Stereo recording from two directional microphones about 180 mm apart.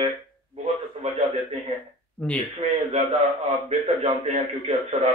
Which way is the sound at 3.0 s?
35° right (ahead or behind).